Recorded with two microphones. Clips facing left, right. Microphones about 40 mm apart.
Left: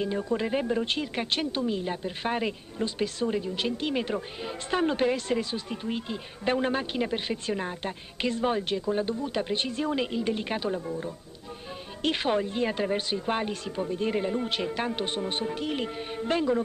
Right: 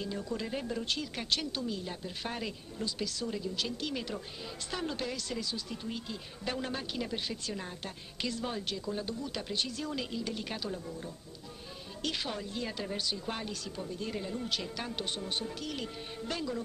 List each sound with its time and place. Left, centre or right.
0.0 s speech: left